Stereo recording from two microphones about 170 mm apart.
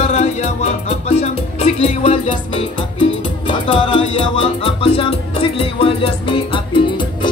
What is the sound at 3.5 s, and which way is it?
Music, 30° left (ahead or behind).